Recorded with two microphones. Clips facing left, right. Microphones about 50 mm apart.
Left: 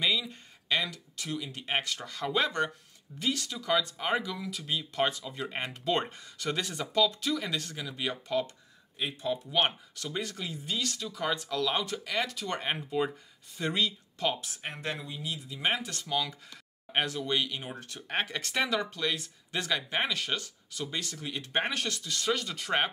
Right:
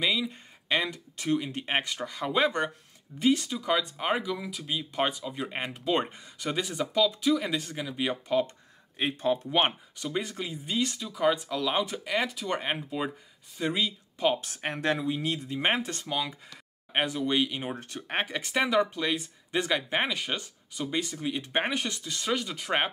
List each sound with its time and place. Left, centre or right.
0.0 s speech: centre
0.3 s speech: right
8.9 s speech: right
9.5 s speech: right
9.9 s speech: centre
14.4 s speech: right
15.2 s speech: right
18.1 s speech: centre